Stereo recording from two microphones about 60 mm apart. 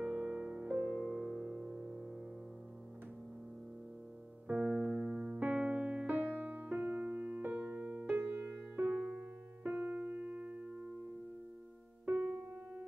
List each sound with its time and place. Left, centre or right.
0.0 s music: centre
4.5 s electric piano: centre
8.1 s music: right
8.9 s keyboard: right